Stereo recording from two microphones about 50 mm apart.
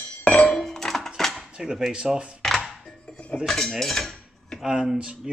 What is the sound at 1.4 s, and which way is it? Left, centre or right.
Dishes, centre.